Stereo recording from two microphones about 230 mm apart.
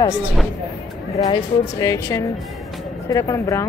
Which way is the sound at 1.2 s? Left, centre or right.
Centre.